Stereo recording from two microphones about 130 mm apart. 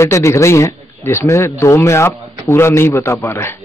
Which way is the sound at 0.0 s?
20° left (ahead or behind).